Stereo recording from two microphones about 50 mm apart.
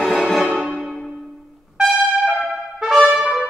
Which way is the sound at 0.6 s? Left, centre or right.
Centre.